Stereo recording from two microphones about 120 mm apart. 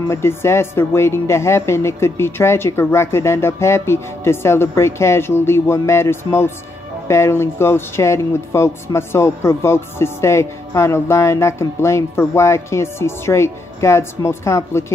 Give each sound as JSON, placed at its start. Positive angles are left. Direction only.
{"t": 0.1, "sound": "speech", "side_deg": 20}